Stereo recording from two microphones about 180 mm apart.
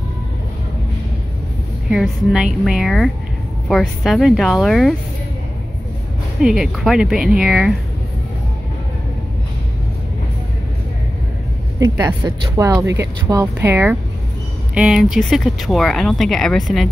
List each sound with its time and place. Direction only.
1.9 s speech: centre (ahead or behind)
6.4 s speech: 5° right (ahead or behind)
11.8 s speech: 15° right (ahead or behind); by 16.8 s centre (ahead or behind)